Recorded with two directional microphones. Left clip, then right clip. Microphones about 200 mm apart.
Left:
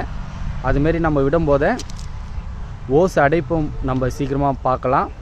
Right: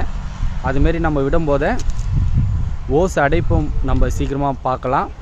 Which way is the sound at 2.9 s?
5° left (ahead or behind).